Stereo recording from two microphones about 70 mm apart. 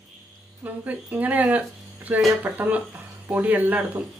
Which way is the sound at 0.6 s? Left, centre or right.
Right.